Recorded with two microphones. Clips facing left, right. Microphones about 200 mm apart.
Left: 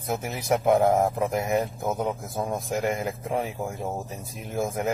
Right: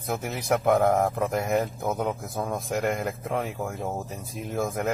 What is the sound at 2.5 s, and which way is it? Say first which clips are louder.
Speech: even; centre (ahead or behind).